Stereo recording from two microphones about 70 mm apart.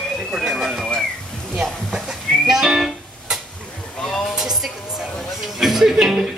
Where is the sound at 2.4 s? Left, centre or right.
Centre.